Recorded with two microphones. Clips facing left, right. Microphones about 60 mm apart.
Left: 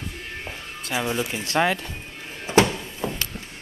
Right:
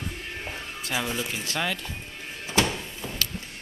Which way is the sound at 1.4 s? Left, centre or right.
Left.